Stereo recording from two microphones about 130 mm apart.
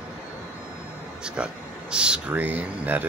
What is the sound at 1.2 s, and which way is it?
Speech, 5° right (ahead or behind).